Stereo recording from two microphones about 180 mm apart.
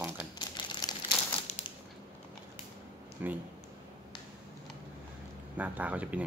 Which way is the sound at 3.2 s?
10° right (ahead or behind).